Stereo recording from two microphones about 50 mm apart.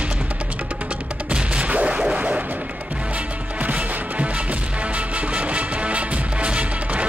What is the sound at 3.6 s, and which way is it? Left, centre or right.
Music, right.